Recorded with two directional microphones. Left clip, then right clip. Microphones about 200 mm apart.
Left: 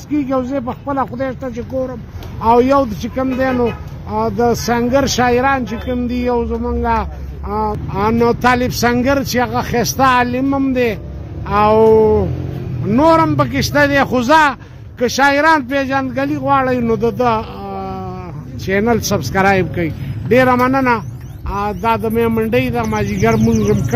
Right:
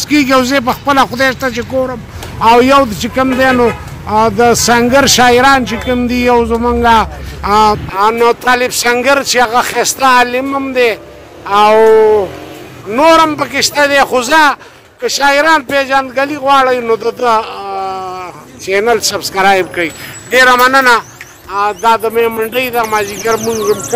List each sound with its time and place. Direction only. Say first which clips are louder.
0.0 s a man's voice: right 9 dB; 10° right (ahead or behind)
0.7 s speech: right 10 dB; 25° right (ahead or behind)
1.1 s a man's voice: right 10 dB; 10° right (ahead or behind)
2.4 s a man's voice: right 5 dB; 10° right (ahead or behind)
4.2 s speech: right 7 dB; 30° right (ahead or behind)
4.5 s a man's voice: right 7 dB; 10° right (ahead or behind); by 7.8 s 25° right (ahead or behind)
7.9 s a man's voice: right 6 dB; 10° right (ahead or behind)